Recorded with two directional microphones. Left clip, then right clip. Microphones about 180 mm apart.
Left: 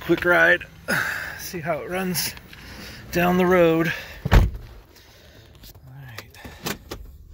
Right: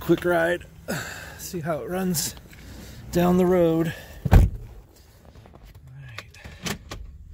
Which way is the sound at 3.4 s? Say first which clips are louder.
Left 6 dB; 15° right (ahead or behind).